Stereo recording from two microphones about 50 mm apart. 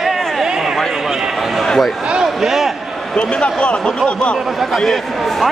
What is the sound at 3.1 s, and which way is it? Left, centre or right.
Speech, left.